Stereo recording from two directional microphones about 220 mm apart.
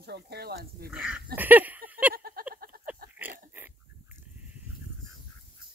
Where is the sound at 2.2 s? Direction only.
45° right (ahead or behind).